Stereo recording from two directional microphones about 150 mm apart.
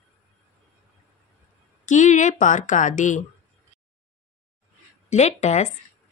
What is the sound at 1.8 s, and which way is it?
A woman's voice, 55° left (ahead or behind).